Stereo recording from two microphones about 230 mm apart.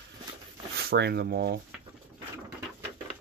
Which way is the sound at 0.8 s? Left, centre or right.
Right.